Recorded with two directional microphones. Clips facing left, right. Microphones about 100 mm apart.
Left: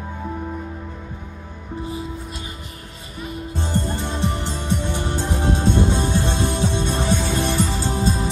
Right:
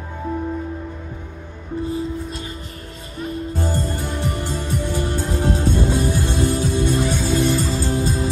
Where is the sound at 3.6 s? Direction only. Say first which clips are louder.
Left 1 dB; 20° left (ahead or behind).